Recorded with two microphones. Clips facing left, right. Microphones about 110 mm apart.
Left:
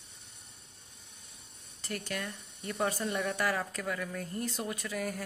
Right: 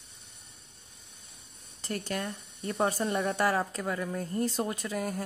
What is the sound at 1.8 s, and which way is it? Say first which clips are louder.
A woman's voice: right 4 dB; 30° right (ahead or behind).